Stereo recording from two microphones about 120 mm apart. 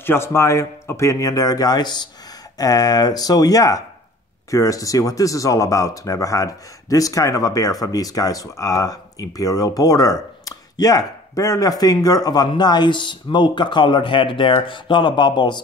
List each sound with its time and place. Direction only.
0.0 s speech: 20° left (ahead or behind); by 15.6 s 40° left (ahead or behind)